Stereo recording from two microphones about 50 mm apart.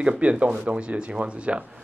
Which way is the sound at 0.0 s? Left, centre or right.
Right.